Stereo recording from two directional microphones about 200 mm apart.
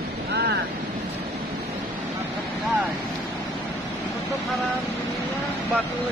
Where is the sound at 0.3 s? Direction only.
55° right (ahead or behind).